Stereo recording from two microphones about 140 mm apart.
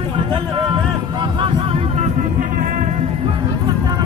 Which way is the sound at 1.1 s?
35° right (ahead or behind).